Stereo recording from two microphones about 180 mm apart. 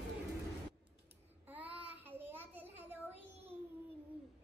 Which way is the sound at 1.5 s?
10° right (ahead or behind).